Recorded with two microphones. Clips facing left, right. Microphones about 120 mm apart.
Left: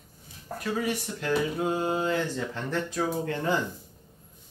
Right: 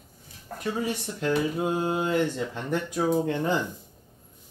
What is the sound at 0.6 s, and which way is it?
Speech, 25° right (ahead or behind).